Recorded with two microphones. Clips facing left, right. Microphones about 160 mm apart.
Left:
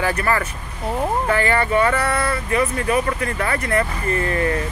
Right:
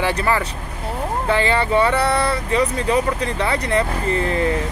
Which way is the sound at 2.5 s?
20° right (ahead or behind).